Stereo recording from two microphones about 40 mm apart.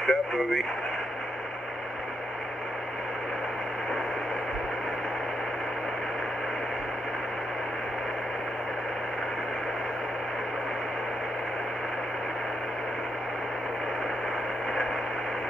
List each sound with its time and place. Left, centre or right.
0.0 s radio: centre